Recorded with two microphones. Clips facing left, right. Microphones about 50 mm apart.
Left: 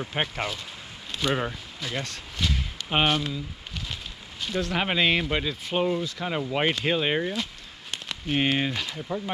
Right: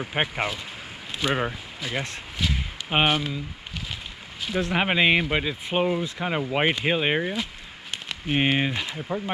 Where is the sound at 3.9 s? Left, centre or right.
Centre.